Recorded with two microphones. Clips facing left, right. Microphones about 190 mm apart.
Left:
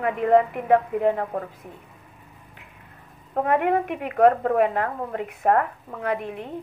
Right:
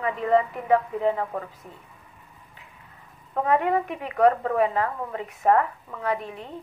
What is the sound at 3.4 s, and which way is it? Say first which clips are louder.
A woman's voice: left 1 dB; 60° left (ahead or behind).